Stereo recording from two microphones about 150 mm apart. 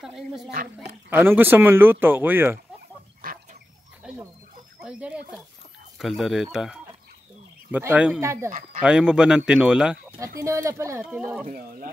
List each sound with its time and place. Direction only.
0.0 s speech: 5° right (ahead or behind)
1.1 s speech: 15° right (ahead or behind)
4.0 s rodents: 5° right (ahead or behind)
4.8 s speech: 10° right (ahead or behind)
8.8 s speech: 5° right (ahead or behind)
10.4 s speech: 20° right (ahead or behind)
11.1 s speech: 5° right (ahead or behind)